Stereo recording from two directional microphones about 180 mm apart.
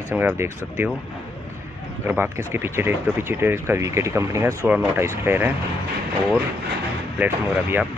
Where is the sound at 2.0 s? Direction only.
15° right (ahead or behind).